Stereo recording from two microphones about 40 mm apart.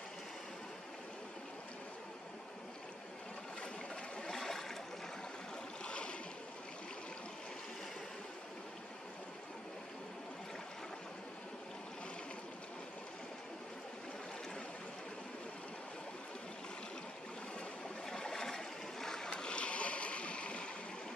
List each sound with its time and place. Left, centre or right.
4.2 s a sound: centre
5.9 s boat: left
18.0 s boat: centre